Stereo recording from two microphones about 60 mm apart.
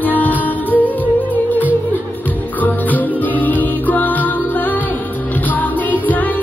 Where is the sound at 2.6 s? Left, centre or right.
Left.